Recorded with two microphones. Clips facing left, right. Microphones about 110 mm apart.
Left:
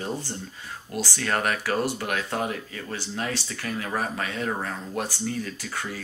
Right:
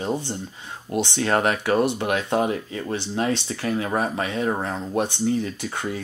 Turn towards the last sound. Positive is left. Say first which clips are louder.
# right 5 dB
turn(degrees=-25)  # may be behind; listen again after turning